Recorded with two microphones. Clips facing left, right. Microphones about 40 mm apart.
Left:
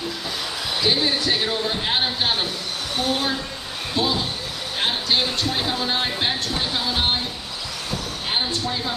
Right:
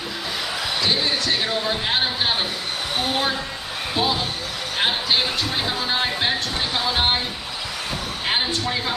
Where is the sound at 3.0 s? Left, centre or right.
Centre.